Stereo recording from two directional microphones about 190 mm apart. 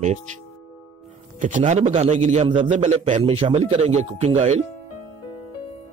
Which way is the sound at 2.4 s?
30° right (ahead or behind).